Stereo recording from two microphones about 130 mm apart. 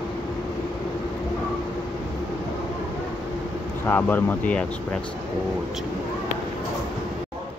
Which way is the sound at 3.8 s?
15° left (ahead or behind).